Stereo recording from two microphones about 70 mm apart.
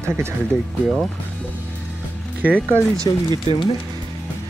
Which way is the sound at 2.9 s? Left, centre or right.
Right.